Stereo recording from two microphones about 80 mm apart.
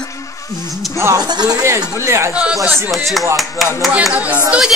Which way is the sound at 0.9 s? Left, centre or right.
Right.